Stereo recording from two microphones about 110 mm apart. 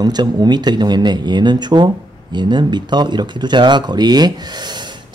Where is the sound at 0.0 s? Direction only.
40° right (ahead or behind).